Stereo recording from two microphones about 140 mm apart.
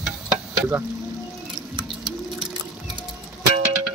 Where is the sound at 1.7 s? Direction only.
35° right (ahead or behind).